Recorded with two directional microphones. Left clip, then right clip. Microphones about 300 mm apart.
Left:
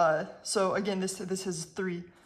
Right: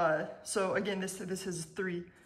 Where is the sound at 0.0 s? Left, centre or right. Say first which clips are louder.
Left 4 dB; centre.